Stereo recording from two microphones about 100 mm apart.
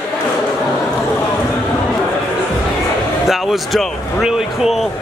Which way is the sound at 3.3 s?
Centre (ahead or behind).